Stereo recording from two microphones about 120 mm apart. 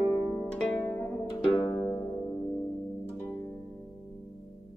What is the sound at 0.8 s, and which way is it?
Music, 15° left (ahead or behind).